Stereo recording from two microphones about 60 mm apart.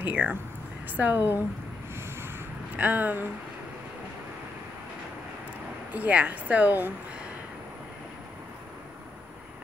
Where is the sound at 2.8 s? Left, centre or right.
Right.